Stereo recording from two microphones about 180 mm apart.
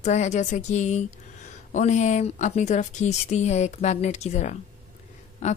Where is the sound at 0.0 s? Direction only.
40° left (ahead or behind).